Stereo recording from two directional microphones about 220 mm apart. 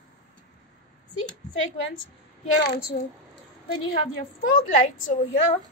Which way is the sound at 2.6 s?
50° left (ahead or behind).